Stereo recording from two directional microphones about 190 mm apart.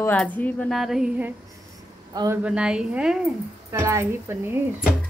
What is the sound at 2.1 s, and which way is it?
Speech, 15° right (ahead or behind).